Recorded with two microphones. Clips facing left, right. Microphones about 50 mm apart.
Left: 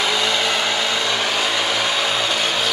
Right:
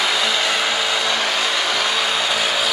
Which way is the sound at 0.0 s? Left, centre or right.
Centre.